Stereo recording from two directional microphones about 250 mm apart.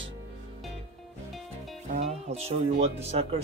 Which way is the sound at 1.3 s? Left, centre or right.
Centre.